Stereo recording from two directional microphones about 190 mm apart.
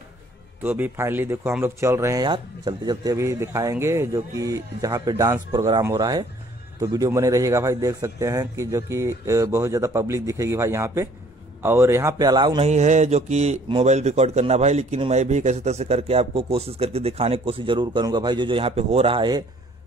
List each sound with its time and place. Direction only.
0.6 s speech: 10° right (ahead or behind)
12.6 s speech: 35° right (ahead or behind)